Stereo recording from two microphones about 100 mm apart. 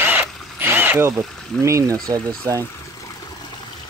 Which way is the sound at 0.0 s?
20° right (ahead or behind).